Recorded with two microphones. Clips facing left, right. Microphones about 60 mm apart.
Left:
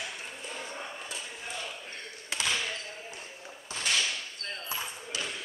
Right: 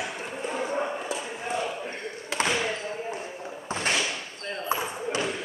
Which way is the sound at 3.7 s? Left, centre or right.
Right.